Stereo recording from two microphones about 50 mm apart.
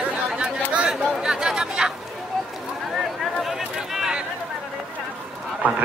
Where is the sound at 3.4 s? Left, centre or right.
Centre.